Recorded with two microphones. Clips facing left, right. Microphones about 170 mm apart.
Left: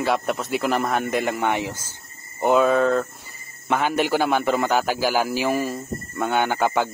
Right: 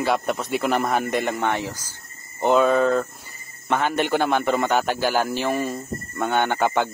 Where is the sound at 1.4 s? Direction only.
15° left (ahead or behind).